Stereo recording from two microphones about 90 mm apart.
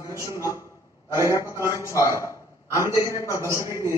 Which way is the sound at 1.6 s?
35° left (ahead or behind).